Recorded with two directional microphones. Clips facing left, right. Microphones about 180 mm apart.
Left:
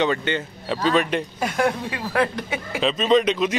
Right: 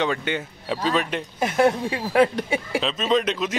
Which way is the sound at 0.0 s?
5° right (ahead or behind).